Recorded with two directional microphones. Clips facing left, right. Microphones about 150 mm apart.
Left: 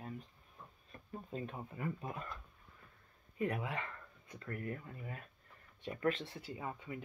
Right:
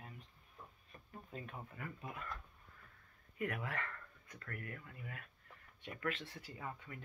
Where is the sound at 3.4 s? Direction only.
25° left (ahead or behind).